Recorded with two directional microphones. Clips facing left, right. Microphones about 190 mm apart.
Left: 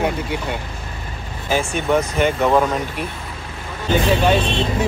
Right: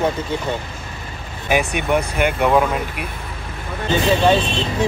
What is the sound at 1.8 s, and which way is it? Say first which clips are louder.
Speech: left 1 dB; 15° right (ahead or behind).